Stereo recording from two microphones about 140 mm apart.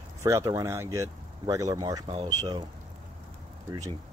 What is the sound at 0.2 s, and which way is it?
Speech, 20° right (ahead or behind).